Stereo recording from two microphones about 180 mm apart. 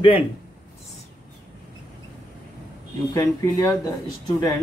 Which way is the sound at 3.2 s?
20° left (ahead or behind).